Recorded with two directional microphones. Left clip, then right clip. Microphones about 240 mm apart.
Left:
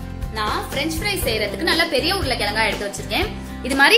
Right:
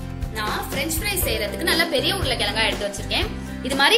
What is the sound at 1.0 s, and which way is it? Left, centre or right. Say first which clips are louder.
Speech: left 3 dB; centre.